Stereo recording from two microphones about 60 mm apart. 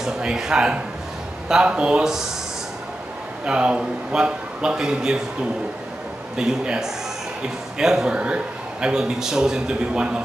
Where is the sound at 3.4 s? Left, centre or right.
Centre.